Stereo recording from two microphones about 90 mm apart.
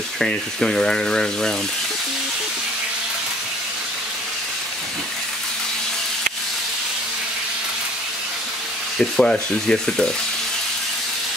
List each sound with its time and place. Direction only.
0.2 s speech: 5° left (ahead or behind)
8.9 s speech: 5° left (ahead or behind)